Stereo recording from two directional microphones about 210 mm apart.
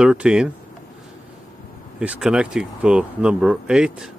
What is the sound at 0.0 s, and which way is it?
Speech, 5° right (ahead or behind).